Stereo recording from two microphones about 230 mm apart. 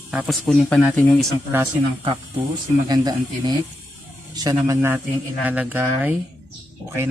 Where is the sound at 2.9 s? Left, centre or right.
Centre.